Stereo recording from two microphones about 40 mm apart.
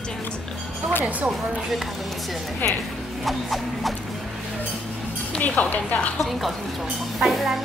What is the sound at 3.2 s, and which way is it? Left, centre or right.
Speech, centre.